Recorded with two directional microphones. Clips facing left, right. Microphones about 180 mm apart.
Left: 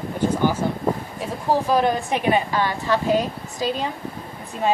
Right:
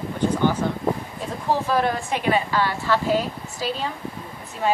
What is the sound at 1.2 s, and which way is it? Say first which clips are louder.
A woman's voice: left 2 dB; 15° left (ahead or behind).